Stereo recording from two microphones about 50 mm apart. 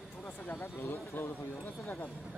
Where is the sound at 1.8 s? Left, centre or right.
Left.